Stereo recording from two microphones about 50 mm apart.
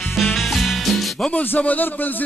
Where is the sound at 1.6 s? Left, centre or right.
Left.